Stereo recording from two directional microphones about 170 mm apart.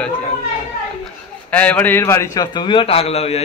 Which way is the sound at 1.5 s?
10° left (ahead or behind).